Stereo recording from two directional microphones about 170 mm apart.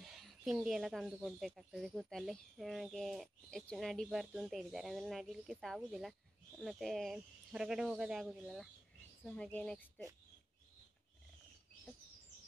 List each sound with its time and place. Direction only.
0.0 s speech: centre (ahead or behind)